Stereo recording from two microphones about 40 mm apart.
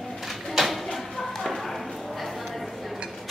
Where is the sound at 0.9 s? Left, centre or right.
Centre.